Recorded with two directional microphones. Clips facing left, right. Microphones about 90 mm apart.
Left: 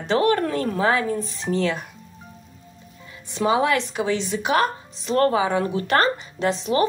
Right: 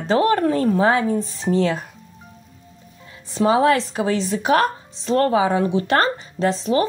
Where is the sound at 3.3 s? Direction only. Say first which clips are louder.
Right 4 dB; 35° right (ahead or behind).